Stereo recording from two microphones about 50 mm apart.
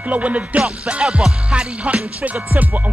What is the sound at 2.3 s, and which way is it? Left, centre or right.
Music, right.